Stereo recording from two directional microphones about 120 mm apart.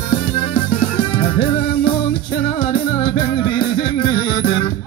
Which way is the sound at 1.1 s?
45° left (ahead or behind).